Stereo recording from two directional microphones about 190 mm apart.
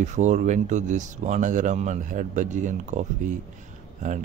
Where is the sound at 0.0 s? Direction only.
40° right (ahead or behind).